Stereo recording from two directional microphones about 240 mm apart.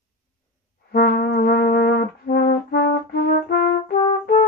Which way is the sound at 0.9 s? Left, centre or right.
Left.